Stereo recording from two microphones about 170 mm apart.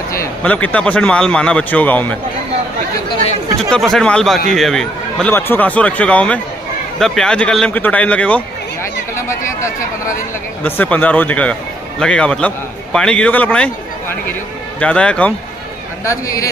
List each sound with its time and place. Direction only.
0.1 s a man's voice: 15° left (ahead or behind)
3.7 s a man's voice: 5° left (ahead or behind)
16.1 s a man's voice: 20° left (ahead or behind)